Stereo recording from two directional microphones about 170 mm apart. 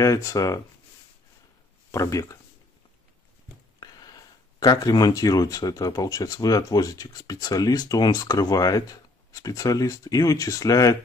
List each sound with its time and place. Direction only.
0.0 s speech: 20° left (ahead or behind)
1.9 s speech: 20° left (ahead or behind)
3.8 s speech: 25° left (ahead or behind)